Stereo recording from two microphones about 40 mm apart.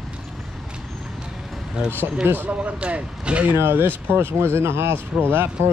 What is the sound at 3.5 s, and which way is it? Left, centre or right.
Speech, right.